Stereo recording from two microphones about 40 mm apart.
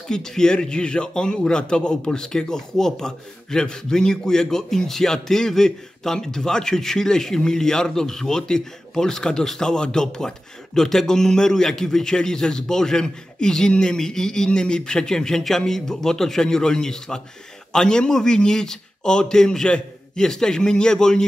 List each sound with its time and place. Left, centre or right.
0.1 s a man's voice: centre